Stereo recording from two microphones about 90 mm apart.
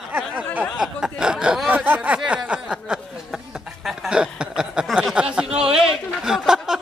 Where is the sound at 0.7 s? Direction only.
5° right (ahead or behind).